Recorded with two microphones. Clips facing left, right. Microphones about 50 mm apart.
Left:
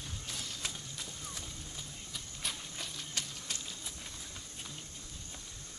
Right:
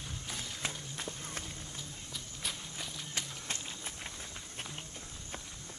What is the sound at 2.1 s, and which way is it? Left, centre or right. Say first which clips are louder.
Walk: even; centre.